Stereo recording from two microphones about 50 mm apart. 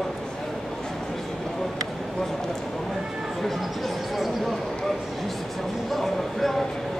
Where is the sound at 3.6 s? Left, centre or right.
Centre.